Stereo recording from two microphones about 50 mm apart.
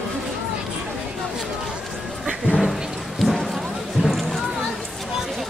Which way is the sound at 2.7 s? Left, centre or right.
Centre.